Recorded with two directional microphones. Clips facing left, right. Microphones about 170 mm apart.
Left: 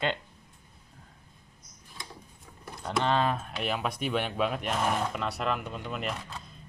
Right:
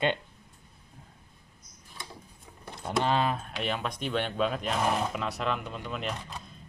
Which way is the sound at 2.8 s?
5° right (ahead or behind).